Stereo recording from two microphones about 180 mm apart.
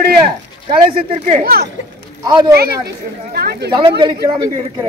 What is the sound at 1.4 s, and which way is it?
Speech, 60° right (ahead or behind).